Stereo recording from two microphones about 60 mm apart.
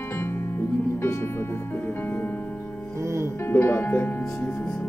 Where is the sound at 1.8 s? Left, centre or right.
Left.